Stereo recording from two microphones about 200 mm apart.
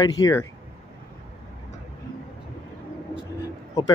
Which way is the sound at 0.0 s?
15° left (ahead or behind).